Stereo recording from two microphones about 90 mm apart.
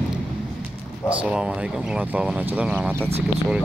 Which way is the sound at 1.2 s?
10° right (ahead or behind).